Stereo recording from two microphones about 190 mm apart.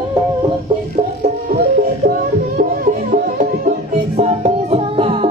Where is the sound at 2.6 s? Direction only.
45° right (ahead or behind).